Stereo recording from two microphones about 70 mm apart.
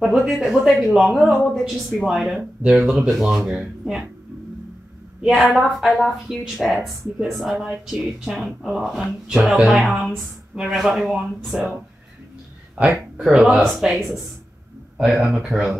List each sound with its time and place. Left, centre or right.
0.0 s a woman's voice: centre
5.2 s a woman's voice: centre
12.7 s a woman's voice: centre